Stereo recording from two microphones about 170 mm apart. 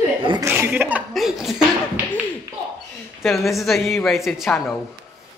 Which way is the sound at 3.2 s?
Centre (ahead or behind).